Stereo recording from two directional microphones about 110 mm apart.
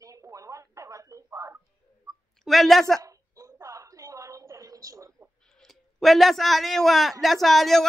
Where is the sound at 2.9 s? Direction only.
30° right (ahead or behind).